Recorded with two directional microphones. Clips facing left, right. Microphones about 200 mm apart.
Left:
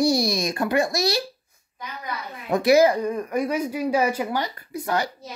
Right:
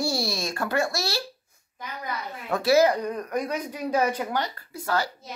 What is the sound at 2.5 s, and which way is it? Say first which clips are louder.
Speech: left 3 dB; 15° left (ahead or behind).